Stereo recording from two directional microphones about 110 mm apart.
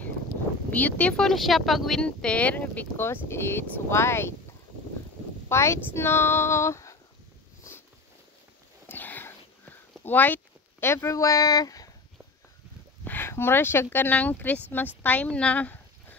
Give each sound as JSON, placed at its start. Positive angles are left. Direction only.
{"t": 0.7, "sound": "speech", "side_deg": 15}
{"t": 5.5, "sound": "female singing", "side_deg": 25}
{"t": 8.8, "sound": "a sound", "side_deg": 15}
{"t": 13.0, "sound": "a woman's voice", "side_deg": 20}